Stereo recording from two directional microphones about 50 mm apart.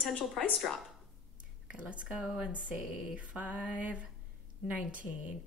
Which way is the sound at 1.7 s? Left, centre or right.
Right.